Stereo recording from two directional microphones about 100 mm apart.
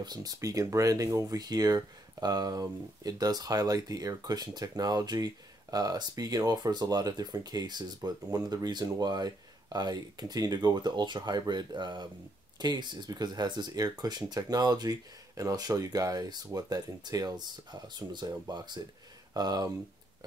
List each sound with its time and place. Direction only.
0.0 s speech: 40° right (ahead or behind)